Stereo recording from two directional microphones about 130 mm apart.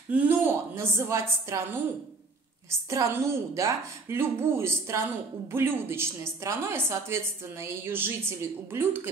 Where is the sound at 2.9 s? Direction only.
20° right (ahead or behind).